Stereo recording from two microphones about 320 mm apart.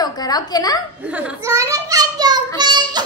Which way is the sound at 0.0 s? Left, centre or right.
Centre.